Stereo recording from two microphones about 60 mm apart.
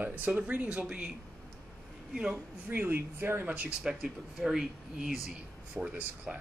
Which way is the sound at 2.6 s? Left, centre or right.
Right.